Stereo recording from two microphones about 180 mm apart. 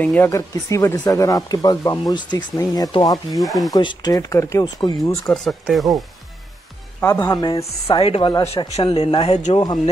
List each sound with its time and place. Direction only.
0.0 s speech: 10° left (ahead or behind)
3.3 s speech: centre (ahead or behind)
3.7 s speech: 20° left (ahead or behind)
5.3 s speech: centre (ahead or behind)
7.0 s speech: 15° left (ahead or behind)
7.5 s speech: 30° left (ahead or behind)